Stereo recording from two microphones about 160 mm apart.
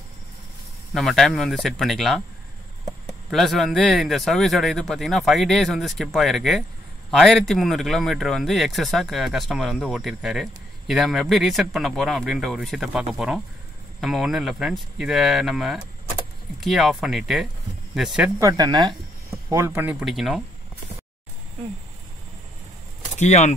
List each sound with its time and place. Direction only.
0.9 s speech: centre (ahead or behind)
3.3 s speech: centre (ahead or behind)
18.4 s speech: 25° right (ahead or behind)
19.5 s speech: 15° right (ahead or behind)
23.1 s speech: 45° left (ahead or behind)